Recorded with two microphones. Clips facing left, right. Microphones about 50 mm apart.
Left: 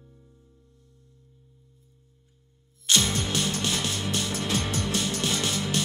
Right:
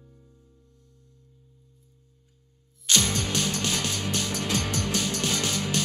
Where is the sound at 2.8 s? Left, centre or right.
Left.